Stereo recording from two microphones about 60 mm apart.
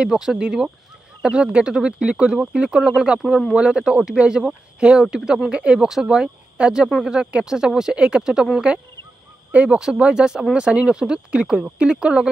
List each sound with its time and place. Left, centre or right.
0.0 s speech: centre
9.5 s speech: right